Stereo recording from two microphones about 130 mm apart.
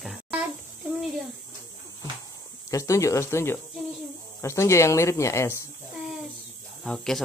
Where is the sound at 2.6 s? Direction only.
25° left (ahead or behind).